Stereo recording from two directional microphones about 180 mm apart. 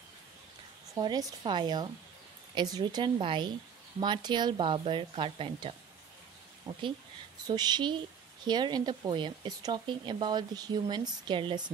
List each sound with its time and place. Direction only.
0.9 s speech: 25° right (ahead or behind)
6.7 s speech: 15° right (ahead or behind)